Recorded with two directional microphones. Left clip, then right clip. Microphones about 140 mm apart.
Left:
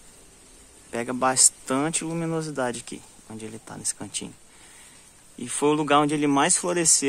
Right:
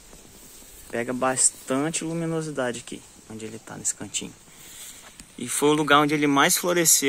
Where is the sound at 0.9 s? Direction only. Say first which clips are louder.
Left 1 dB; 5° left (ahead or behind).